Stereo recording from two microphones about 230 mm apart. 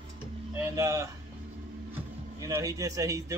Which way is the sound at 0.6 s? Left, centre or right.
Centre.